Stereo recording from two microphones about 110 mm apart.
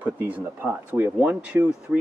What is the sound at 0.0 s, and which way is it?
Speech, 15° right (ahead or behind).